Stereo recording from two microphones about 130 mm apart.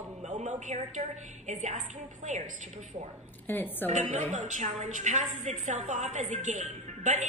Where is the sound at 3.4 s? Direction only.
15° left (ahead or behind).